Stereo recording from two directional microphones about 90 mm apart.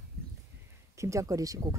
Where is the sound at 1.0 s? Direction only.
35° right (ahead or behind).